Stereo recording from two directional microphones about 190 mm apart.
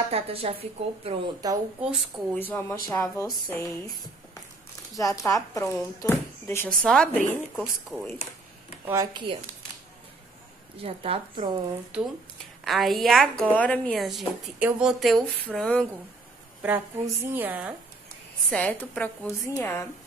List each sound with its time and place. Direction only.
0.1 s a woman's voice: 30° right (ahead or behind)
1.8 s speech: 5° right (ahead or behind)
2.3 s speech: 10° left (ahead or behind)
4.9 s speech: 15° left (ahead or behind); by 8.1 s centre (ahead or behind)
8.8 s a woman's voice: 15° right (ahead or behind)
10.8 s a woman's voice: 30° right (ahead or behind)
11.9 s a woman's voice: 5° right (ahead or behind)
16.6 s a woman's voice: 10° right (ahead or behind)
18.5 s speech: 10° left (ahead or behind)